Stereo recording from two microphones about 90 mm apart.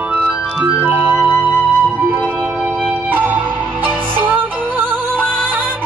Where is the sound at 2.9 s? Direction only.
20° right (ahead or behind).